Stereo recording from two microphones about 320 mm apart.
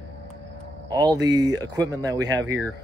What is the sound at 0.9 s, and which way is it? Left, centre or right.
Speech, centre.